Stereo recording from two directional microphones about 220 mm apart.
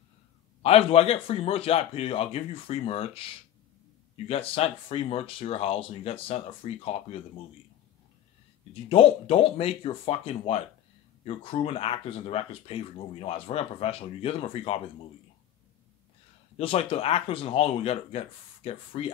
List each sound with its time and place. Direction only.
0.6 s speech: 25° left (ahead or behind)
8.8 s speech: 25° left (ahead or behind)
16.5 s speech: 25° left (ahead or behind)